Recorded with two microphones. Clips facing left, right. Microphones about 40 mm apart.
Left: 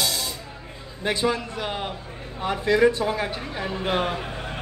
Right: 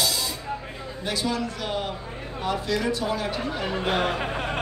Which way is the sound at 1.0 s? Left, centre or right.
Left.